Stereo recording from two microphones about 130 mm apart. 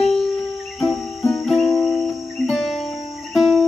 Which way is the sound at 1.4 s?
Centre (ahead or behind).